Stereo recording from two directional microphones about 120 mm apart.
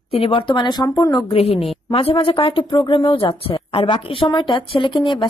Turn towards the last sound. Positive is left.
turn(degrees=45)  # may be behind; listen again after turning